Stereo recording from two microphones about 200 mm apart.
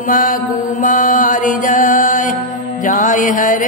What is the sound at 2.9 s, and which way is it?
Music, 40° left (ahead or behind).